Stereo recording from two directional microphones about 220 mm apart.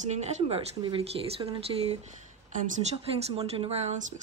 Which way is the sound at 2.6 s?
25° right (ahead or behind).